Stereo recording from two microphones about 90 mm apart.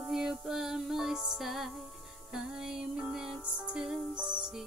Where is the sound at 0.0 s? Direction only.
5° right (ahead or behind).